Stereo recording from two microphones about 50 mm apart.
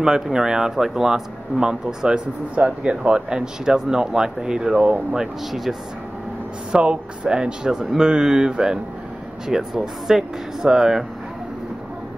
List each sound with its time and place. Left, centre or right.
0.0 s speech: centre
5.5 s speech: centre
6.7 s speech: right